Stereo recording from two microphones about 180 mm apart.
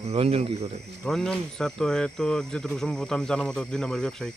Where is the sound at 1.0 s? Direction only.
5° left (ahead or behind).